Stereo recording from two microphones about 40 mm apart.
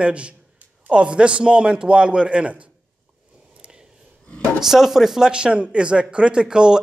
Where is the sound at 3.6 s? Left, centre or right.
Right.